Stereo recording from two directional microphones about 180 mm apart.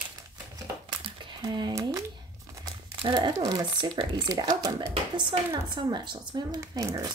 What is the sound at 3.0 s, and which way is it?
A woman's voice, 25° right (ahead or behind).